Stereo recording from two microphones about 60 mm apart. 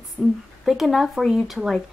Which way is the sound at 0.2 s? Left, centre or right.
Right.